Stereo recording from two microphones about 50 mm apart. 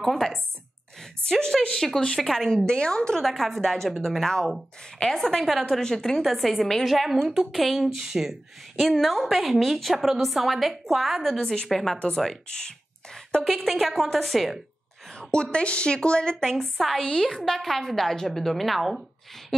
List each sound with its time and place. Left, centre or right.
0.0 s a woman's voice: centre
3.2 s a woman's voice: centre
8.7 s a woman's voice: centre
11.3 s a woman's voice: centre
12.4 s a sound: centre
13.5 s a woman's voice: centre
15.1 s a woman's voice: centre
16.7 s a woman's voice: centre